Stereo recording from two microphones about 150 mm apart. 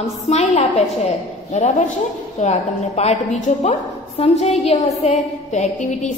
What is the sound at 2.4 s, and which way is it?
A woman's voice, 50° left (ahead or behind).